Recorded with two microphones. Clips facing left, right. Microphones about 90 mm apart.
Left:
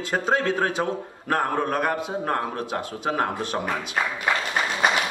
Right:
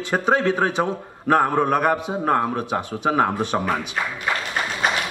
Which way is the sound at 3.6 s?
25° right (ahead or behind).